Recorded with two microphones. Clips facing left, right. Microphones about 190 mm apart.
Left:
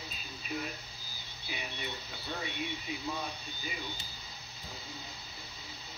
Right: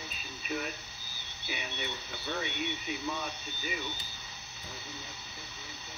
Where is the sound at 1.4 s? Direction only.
70° right (ahead or behind).